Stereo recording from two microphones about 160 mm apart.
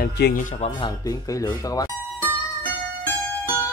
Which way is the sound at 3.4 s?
10° right (ahead or behind).